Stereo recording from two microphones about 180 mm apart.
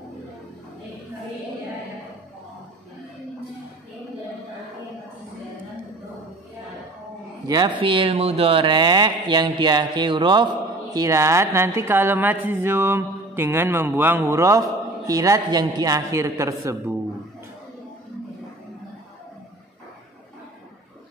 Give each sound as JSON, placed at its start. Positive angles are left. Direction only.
{"t": 7.4, "sound": "speech", "side_deg": -20}